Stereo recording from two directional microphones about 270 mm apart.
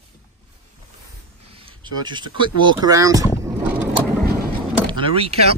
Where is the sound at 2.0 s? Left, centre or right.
Centre.